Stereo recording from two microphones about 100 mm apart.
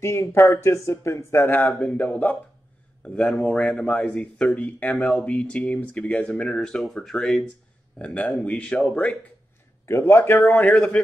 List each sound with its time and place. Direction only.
0.0 s speech: 30° left (ahead or behind)
1.6 s speech: 5° left (ahead or behind)
9.8 s speech: 25° left (ahead or behind)
10.4 s a man's voice: 10° left (ahead or behind)